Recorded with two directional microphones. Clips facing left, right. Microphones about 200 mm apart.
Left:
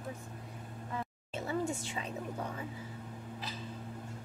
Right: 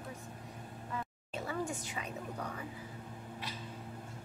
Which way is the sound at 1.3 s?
25° left (ahead or behind).